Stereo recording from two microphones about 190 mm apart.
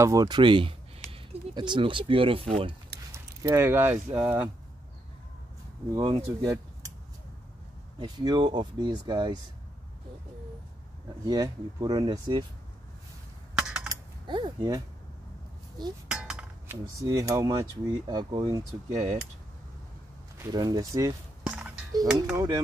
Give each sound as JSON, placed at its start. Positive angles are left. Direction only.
{"t": 0.0, "sound": "speech", "side_deg": -20}
{"t": 3.1, "sound": "speech", "side_deg": -10}
{"t": 5.9, "sound": "speech", "side_deg": -20}
{"t": 8.0, "sound": "speech", "side_deg": -20}
{"t": 11.2, "sound": "speech", "side_deg": -20}
{"t": 13.6, "sound": "a sound", "side_deg": -5}
{"t": 13.8, "sound": "typing", "side_deg": -25}
{"t": 16.1, "sound": "chink", "side_deg": -5}
{"t": 17.0, "sound": "speech", "side_deg": -15}
{"t": 18.9, "sound": "speech", "side_deg": -40}
{"t": 20.5, "sound": "speech", "side_deg": -20}